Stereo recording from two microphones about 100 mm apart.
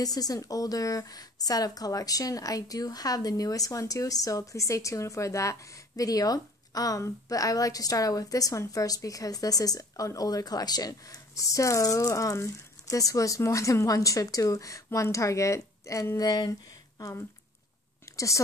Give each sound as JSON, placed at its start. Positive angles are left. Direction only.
{"t": 0.0, "sound": "a woman's voice", "side_deg": 40}
{"t": 18.1, "sound": "whispering", "side_deg": 30}